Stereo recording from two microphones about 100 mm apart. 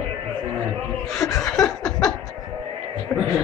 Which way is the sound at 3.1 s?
20° left (ahead or behind).